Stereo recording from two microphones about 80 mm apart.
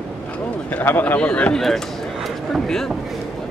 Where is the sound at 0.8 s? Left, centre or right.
Left.